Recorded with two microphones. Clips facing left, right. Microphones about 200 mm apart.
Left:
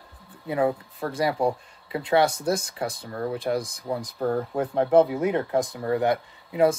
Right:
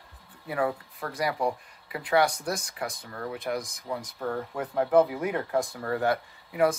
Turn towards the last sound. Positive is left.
turn(degrees=25)  # may be behind; listen again after turning